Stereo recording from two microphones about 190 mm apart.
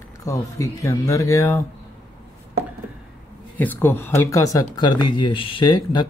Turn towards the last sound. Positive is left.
turn(degrees=20)  # may be behind; listen again after turning